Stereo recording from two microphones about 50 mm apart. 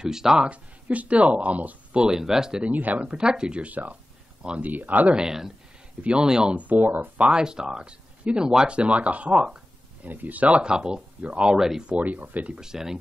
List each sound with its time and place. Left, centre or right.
0.0 s speech: centre
0.5 s speech: right
2.0 s speech: centre
2.6 s speech: right
3.0 s speech: centre
3.7 s speech: right
5.1 s speech: centre
6.6 s speech: right
7.2 s speech: centre
11.5 s speech: centre
11.9 s speech: right
12.4 s speech: centre